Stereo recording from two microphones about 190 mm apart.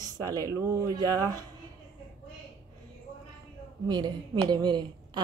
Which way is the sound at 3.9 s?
25° right (ahead or behind).